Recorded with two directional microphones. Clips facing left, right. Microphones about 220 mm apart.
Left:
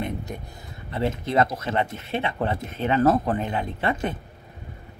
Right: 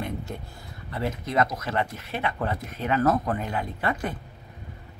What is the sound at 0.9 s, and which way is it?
Speech, 25° left (ahead or behind).